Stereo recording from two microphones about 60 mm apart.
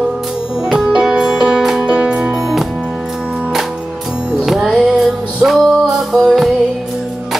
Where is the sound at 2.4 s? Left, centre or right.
Centre.